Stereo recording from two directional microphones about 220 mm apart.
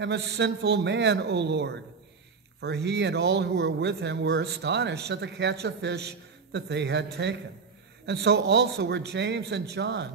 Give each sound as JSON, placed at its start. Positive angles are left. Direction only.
{"t": 0.0, "sound": "a man's voice", "side_deg": -50}